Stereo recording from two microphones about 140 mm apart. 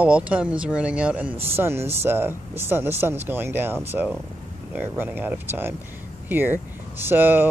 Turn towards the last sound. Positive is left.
turn(degrees=-15)  # may be behind; listen again after turning